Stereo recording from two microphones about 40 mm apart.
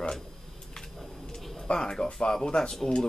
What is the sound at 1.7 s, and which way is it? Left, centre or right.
Speech, centre.